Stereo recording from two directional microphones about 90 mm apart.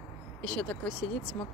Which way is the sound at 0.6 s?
5° left (ahead or behind).